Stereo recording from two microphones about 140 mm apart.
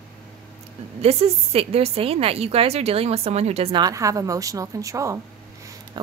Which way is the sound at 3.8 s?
25° right (ahead or behind).